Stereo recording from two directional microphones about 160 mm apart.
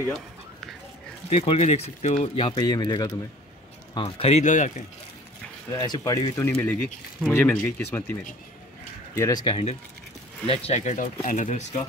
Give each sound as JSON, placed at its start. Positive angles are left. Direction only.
{"t": 1.3, "sound": "speech", "side_deg": 35}
{"t": 2.3, "sound": "speech", "side_deg": 30}
{"t": 3.9, "sound": "speech", "side_deg": 35}
{"t": 5.7, "sound": "speech", "side_deg": 20}
{"t": 6.5, "sound": "speech", "side_deg": 5}
{"t": 9.1, "sound": "speech", "side_deg": 20}